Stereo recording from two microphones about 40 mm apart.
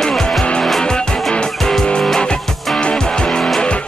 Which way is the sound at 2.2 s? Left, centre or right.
Left.